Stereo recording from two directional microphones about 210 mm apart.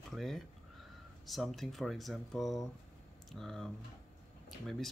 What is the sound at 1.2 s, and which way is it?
Speech, centre (ahead or behind).